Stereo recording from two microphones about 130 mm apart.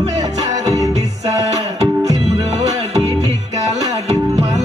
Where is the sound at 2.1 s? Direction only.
60° right (ahead or behind).